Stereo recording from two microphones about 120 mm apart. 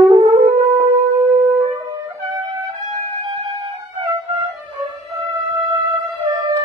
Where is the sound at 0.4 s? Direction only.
65° right (ahead or behind).